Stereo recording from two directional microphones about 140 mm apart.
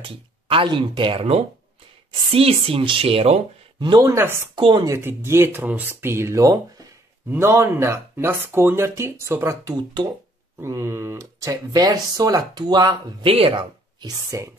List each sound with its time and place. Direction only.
0.0 s speech: 40° right (ahead or behind)
4.1 s speech: 15° right (ahead or behind)
4.6 s speech: 35° right (ahead or behind)
4.8 s speech: 20° right (ahead or behind)
13.3 s speech: 40° right (ahead or behind)
14.3 s speech: 25° right (ahead or behind)